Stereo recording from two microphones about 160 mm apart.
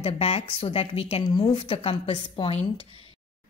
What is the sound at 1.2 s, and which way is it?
Speech, 25° left (ahead or behind).